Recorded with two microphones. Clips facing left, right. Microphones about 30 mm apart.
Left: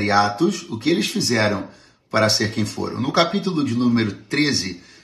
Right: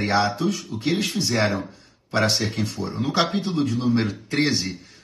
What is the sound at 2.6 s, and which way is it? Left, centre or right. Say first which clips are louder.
Speech: left 3 dB; left.